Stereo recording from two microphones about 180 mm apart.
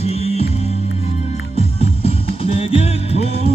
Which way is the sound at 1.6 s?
35° left (ahead or behind).